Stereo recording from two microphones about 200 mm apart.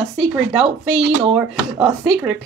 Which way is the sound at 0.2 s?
Centre (ahead or behind).